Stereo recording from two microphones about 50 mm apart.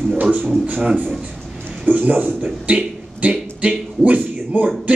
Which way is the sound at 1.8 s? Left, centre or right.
Right.